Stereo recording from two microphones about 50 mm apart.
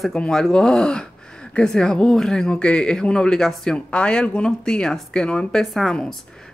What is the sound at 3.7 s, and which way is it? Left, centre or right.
Speech, left.